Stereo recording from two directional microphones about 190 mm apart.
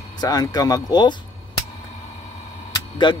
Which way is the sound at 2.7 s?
25° left (ahead or behind).